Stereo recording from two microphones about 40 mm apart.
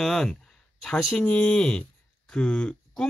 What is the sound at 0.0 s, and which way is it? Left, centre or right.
Speech, centre.